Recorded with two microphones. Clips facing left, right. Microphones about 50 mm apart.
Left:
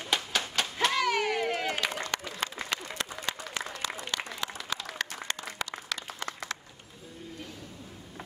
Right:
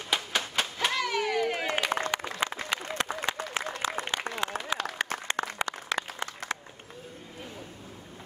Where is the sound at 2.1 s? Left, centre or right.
Centre.